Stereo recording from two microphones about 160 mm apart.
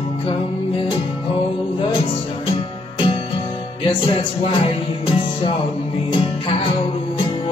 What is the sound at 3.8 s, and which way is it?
Music, 35° left (ahead or behind).